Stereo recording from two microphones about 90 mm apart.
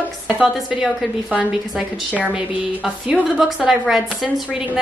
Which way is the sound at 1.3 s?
15° right (ahead or behind).